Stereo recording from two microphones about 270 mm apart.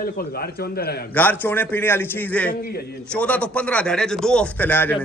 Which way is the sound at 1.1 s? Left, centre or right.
Centre.